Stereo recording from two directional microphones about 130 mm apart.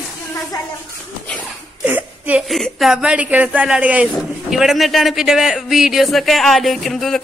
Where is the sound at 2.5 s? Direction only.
Centre (ahead or behind).